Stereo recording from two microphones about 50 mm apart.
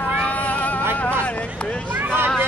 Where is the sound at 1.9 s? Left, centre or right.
Right.